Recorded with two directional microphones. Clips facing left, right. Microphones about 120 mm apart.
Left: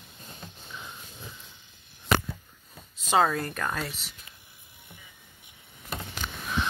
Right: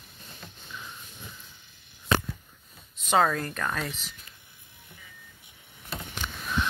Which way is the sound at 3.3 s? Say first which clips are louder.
Even; 35° left (ahead or behind).